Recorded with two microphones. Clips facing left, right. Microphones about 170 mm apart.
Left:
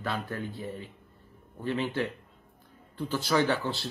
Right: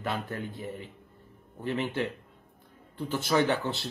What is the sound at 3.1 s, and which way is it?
Speech, 20° right (ahead or behind).